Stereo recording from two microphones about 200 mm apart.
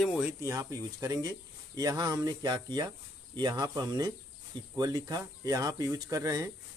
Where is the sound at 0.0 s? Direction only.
5° right (ahead or behind).